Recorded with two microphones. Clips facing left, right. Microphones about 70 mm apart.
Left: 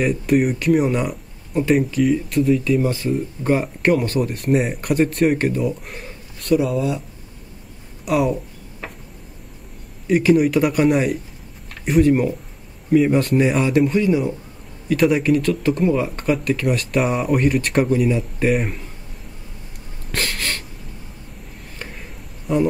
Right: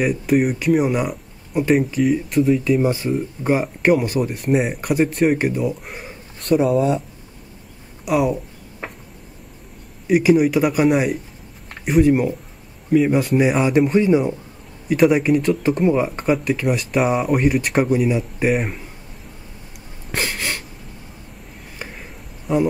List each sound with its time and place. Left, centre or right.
0.0 s speech: centre
2.8 s speech: centre
6.5 s speech: right
8.0 s speech: centre
10.0 s speech: centre
13.9 s speech: right
14.9 s speech: centre
16.1 s speech: centre
20.1 s a sound: centre
22.5 s speech: centre